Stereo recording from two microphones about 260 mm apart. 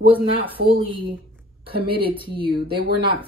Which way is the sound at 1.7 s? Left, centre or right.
Centre.